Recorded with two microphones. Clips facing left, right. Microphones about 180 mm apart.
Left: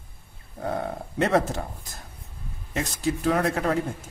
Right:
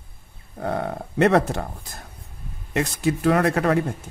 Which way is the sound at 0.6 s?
60° right (ahead or behind).